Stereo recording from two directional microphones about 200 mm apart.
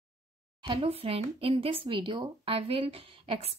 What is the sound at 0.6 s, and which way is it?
Speech, 25° right (ahead or behind).